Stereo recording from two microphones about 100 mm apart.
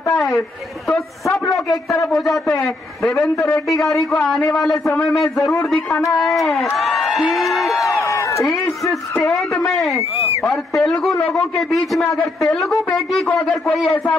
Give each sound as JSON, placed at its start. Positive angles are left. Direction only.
{"t": 1.4, "sound": "a man's voice", "side_deg": 35}
{"t": 2.0, "sound": "a man's voice", "side_deg": 0}
{"t": 3.2, "sound": "a man's voice", "side_deg": 25}
{"t": 3.8, "sound": "a man's voice", "side_deg": 0}
{"t": 6.8, "sound": "a sound", "side_deg": 0}
{"t": 7.9, "sound": "crowd", "side_deg": 30}
{"t": 9.6, "sound": "a sound", "side_deg": 0}
{"t": 10.4, "sound": "a man's voice", "side_deg": 5}